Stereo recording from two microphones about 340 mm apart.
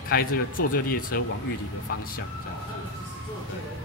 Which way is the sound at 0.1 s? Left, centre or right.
Left.